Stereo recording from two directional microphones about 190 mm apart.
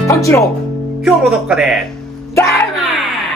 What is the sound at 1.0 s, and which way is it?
Music, 5° right (ahead or behind).